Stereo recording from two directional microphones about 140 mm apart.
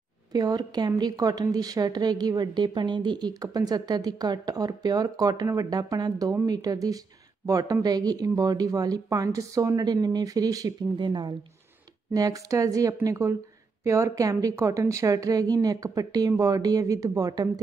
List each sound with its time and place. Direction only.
0.3 s speech: 25° right (ahead or behind)